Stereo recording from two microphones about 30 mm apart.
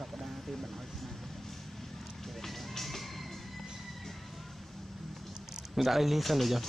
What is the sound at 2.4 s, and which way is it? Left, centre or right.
Music, centre.